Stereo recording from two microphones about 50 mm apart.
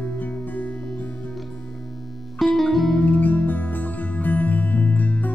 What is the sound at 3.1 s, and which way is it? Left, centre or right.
Music, left.